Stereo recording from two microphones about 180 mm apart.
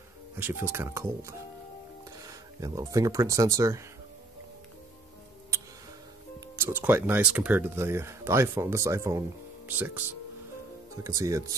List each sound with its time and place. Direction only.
0.4 s speech: 10° right (ahead or behind)
6.5 s speech: 15° right (ahead or behind)
11.1 s speech: 15° right (ahead or behind)